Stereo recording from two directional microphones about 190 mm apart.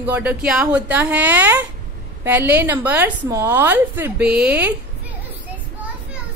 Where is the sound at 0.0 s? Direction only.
10° right (ahead or behind).